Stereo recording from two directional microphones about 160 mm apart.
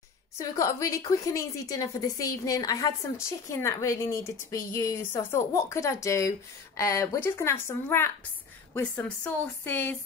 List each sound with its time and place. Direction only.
0.4 s a woman's voice: 20° left (ahead or behind)